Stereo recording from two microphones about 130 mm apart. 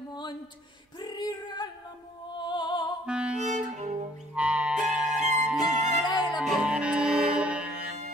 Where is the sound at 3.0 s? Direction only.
5° right (ahead or behind).